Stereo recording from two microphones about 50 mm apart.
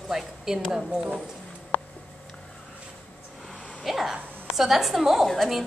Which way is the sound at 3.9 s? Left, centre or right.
Centre.